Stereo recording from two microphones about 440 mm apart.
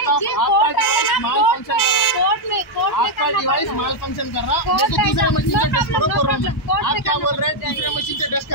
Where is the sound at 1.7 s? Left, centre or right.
Left.